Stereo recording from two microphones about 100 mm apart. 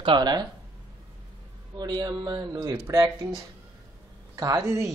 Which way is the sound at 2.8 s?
30° right (ahead or behind).